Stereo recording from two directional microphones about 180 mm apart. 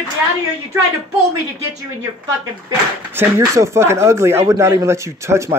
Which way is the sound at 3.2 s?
15° right (ahead or behind).